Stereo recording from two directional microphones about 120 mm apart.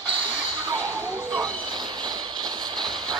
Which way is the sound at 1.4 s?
35° right (ahead or behind).